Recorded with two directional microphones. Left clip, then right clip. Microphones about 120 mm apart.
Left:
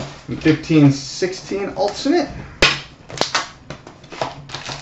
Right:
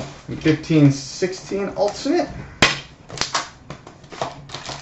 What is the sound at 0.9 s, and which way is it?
Speech, 25° left (ahead or behind).